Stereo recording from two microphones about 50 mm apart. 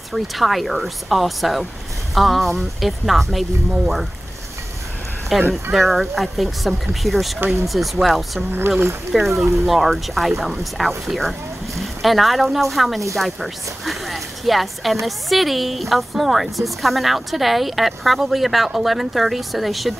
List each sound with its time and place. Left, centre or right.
0.1 s speech: centre
5.3 s speech: centre
8.5 s speech: right
9.1 s speech: centre